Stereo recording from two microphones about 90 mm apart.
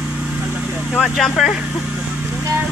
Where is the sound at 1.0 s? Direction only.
Centre (ahead or behind).